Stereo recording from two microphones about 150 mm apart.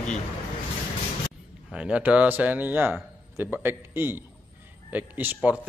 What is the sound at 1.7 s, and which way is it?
A man's voice, 5° right (ahead or behind).